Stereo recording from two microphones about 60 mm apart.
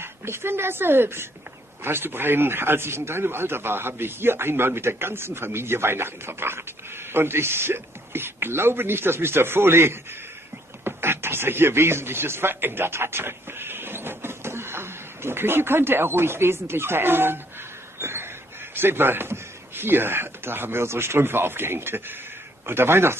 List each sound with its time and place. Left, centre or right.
0.0 s a man's voice: right
18.8 s speech: right